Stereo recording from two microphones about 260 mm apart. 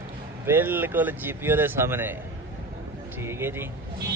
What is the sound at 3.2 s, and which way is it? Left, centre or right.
Speech, centre.